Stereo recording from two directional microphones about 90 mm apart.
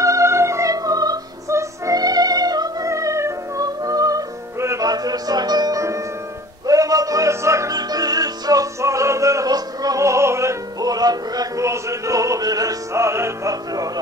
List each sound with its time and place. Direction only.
0.0 s music: 35° right (ahead or behind)
4.8 s music: 45° right (ahead or behind)
7.7 s music: 45° right (ahead or behind)
11.6 s music: 35° right (ahead or behind)